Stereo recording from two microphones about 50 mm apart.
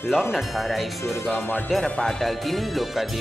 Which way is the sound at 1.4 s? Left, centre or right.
Left.